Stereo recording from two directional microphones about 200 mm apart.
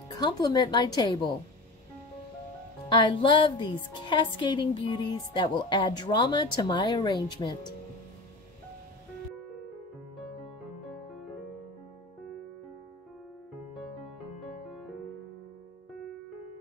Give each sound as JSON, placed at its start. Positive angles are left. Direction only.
{"t": 0.2, "sound": "a woman's voice", "side_deg": 20}
{"t": 2.9, "sound": "a woman's voice", "side_deg": 25}